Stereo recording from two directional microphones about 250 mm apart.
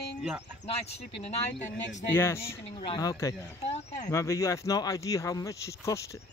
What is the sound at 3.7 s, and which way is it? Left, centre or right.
Speech, left.